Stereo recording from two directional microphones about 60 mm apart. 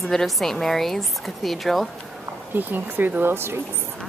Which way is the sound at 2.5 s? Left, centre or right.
Right.